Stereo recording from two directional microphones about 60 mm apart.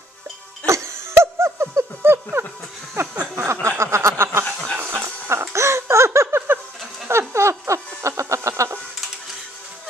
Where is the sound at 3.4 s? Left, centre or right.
Right.